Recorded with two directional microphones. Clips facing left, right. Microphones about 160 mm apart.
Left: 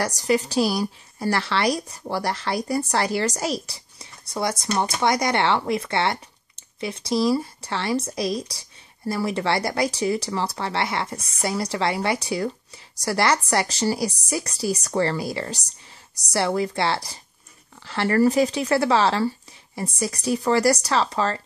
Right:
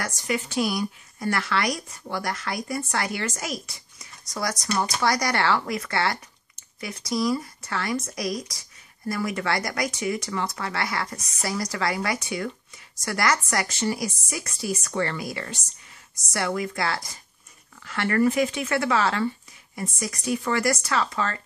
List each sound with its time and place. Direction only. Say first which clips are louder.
0.0 s a woman's voice: left 7 dB; 35° left (ahead or behind)